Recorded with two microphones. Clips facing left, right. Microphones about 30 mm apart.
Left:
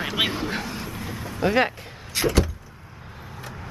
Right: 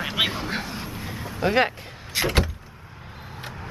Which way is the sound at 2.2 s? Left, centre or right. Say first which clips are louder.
Left 3 dB; right.